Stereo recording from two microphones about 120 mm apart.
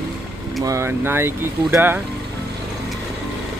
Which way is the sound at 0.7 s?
20° right (ahead or behind).